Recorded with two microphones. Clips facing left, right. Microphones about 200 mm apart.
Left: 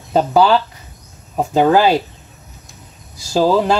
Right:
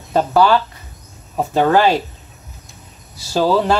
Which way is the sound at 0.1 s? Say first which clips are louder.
Left 1 dB; 15° left (ahead or behind).